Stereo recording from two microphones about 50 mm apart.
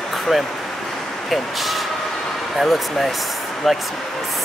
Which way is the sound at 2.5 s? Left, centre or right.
Centre.